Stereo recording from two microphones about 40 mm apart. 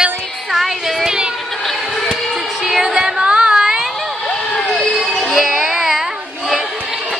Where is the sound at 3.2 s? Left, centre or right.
Right.